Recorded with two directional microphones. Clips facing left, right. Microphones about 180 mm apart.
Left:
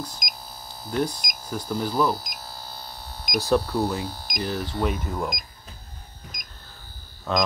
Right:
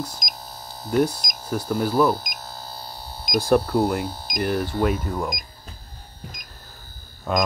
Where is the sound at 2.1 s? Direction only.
25° right (ahead or behind).